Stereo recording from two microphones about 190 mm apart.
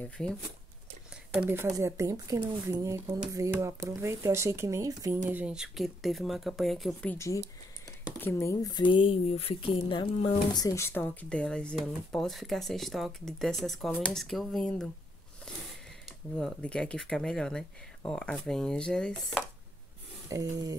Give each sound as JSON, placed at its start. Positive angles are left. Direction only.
{"t": 0.0, "sound": "speech", "side_deg": 5}
{"t": 1.4, "sound": "speech", "side_deg": -10}
{"t": 5.3, "sound": "speech", "side_deg": -5}
{"t": 16.3, "sound": "speech", "side_deg": 5}
{"t": 20.2, "sound": "speech", "side_deg": -20}